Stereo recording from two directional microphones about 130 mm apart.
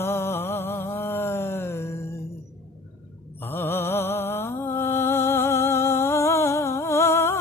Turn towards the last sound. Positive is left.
turn(degrees=20)  # may be behind; listen again after turning